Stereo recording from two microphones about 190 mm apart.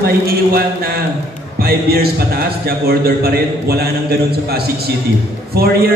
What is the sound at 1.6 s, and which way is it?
A man's voice, 55° right (ahead or behind).